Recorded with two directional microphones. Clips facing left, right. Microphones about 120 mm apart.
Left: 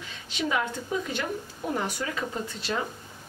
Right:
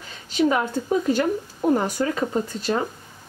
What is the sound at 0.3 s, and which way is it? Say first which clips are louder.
A woman's voice: right 8 dB; 40° right (ahead or behind).